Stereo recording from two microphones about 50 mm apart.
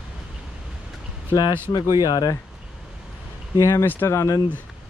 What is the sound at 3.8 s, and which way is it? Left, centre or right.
Speech, left.